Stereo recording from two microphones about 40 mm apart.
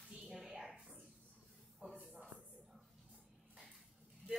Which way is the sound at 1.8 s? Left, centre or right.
Right.